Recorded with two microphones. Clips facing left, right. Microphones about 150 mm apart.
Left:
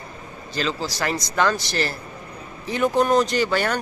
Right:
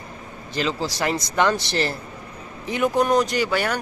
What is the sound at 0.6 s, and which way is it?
Speech, 20° right (ahead or behind).